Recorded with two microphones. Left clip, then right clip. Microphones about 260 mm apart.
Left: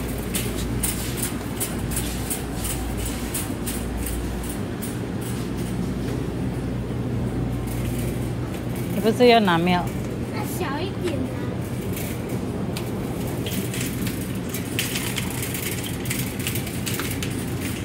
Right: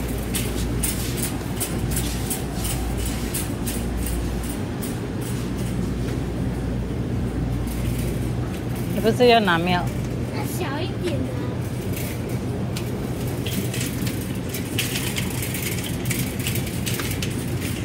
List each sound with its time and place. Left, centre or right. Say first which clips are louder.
9.0 s speech: even; left